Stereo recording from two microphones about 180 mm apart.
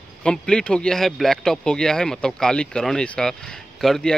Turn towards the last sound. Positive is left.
turn(degrees=5)  # may be behind; listen again after turning